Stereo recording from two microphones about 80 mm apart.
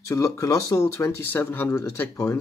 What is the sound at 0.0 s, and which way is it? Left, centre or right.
Speech, left.